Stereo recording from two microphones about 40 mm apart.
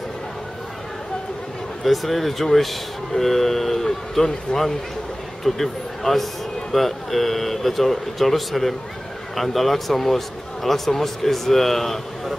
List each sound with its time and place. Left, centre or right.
1.8 s speech: centre